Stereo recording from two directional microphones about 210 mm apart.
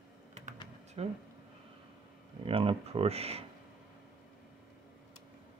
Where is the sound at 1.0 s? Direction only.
30° right (ahead or behind).